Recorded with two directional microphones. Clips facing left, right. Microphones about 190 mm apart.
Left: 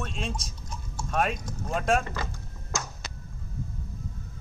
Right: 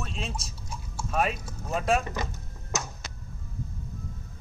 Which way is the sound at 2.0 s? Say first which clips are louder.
Right 1 dB; 15° right (ahead or behind).